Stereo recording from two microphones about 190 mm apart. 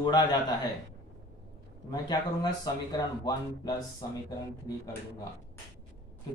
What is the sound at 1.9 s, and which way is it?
Speech, 20° left (ahead or behind).